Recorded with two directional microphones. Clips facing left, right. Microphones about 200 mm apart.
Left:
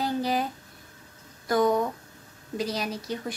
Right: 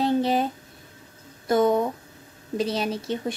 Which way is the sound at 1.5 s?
25° right (ahead or behind).